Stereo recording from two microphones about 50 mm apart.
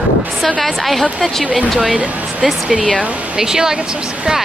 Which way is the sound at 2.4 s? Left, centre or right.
Centre.